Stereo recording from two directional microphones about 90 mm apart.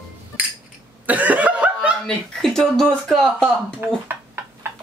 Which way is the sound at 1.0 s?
15° right (ahead or behind).